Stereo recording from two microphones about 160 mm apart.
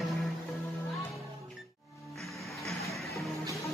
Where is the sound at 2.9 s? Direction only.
Centre (ahead or behind).